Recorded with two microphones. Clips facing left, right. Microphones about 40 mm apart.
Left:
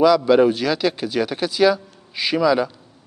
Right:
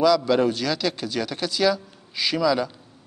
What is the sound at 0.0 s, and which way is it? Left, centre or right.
A man's voice, centre.